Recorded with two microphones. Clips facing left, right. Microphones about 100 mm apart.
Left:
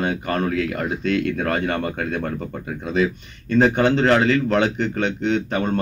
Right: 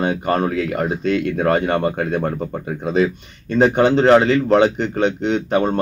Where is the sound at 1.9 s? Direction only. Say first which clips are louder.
Right 4 dB; 30° right (ahead or behind).